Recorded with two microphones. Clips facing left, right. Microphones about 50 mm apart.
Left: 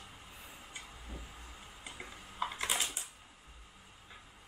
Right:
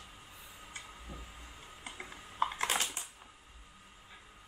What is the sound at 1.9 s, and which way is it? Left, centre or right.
Typing, right.